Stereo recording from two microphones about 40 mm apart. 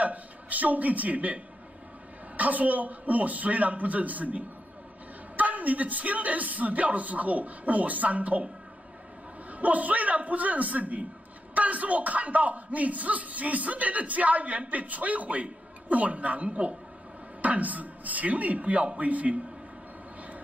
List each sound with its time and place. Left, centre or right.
0.0 s a man's voice: right
9.5 s speech: right